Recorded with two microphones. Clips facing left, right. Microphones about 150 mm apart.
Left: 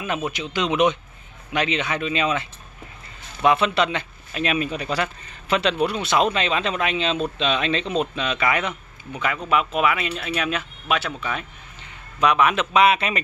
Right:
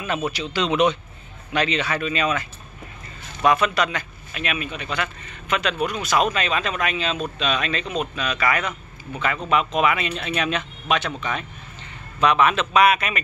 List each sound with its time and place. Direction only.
0.0 s speech: 15° left (ahead or behind)
3.4 s speech: 25° left (ahead or behind); by 12.6 s 10° left (ahead or behind)
12.7 s speech: 25° left (ahead or behind)